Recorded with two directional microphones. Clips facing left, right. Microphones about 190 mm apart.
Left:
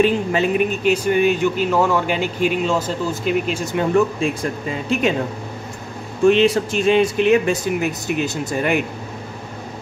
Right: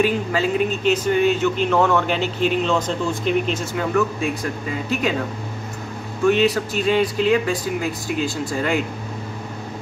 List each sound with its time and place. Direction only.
0.0 s speech: 20° left (ahead or behind)
3.7 s speech: 25° left (ahead or behind)
6.2 s speech: 25° left (ahead or behind)